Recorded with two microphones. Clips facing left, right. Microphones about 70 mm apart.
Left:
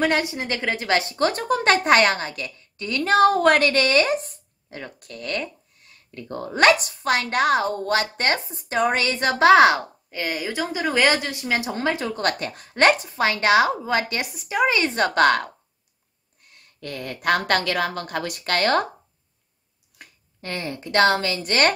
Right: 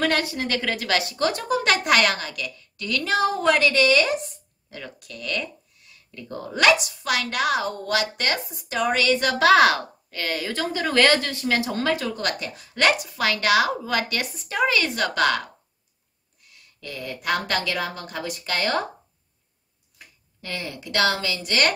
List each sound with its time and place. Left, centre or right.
0.0 s speech: left
3.1 s a woman's voice: left
12.2 s a woman's voice: left
14.3 s a woman's voice: centre; by 15.1 s left
15.1 s a woman's voice: left
20.0 s a sound: left
21.1 s a woman's voice: left